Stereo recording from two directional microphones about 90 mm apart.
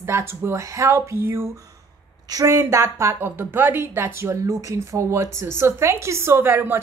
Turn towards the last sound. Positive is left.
turn(degrees=-25)  # may be behind; listen again after turning